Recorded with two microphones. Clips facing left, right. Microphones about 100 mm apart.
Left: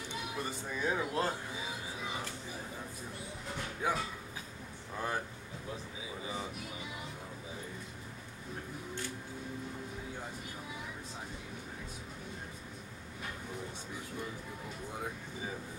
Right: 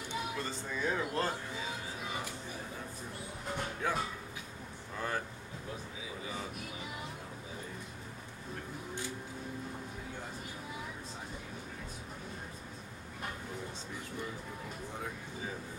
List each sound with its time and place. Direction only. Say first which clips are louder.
0.4 s music: even; 10° left (ahead or behind)
3.8 s a sound: left 2 dB; 15° left (ahead or behind)
6.2 s music: left 2 dB; 20° left (ahead or behind)